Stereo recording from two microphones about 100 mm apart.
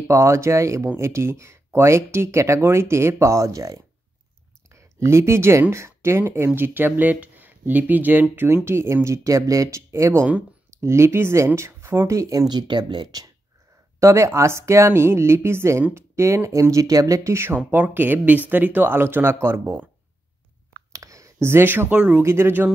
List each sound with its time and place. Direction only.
0.1 s speech: 30° right (ahead or behind); by 13.3 s 45° right (ahead or behind)
13.9 s speech: 30° right (ahead or behind)
20.9 s speech: 35° right (ahead or behind)